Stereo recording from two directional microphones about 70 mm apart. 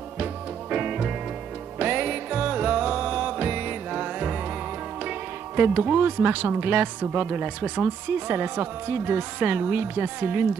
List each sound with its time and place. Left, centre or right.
0.2 s music: centre
1.8 s music: right
5.6 s a woman's voice: right
8.5 s a woman's voice: right